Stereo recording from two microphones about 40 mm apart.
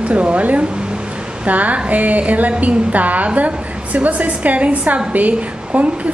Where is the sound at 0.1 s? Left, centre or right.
Right.